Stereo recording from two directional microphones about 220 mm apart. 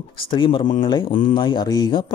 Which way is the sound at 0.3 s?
25° left (ahead or behind).